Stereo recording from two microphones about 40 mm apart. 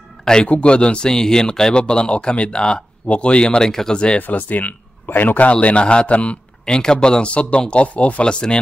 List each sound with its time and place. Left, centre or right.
0.2 s music: centre
0.5 s speech: left; by 4.0 s centre
4.2 s speech: left
5.5 s a man's voice: left
6.6 s speech: centre